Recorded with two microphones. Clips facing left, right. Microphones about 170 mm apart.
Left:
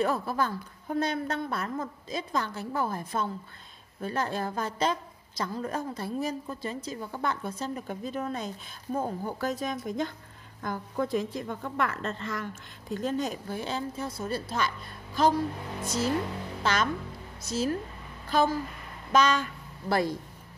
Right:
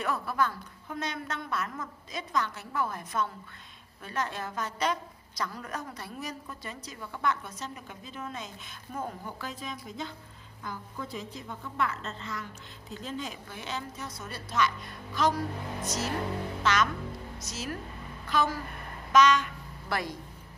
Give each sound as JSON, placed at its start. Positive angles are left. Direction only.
{"t": 0.0, "sound": "a woman's voice", "side_deg": 30}
{"t": 9.5, "sound": "a woman's voice", "side_deg": 45}
{"t": 16.6, "sound": "a woman's voice", "side_deg": 30}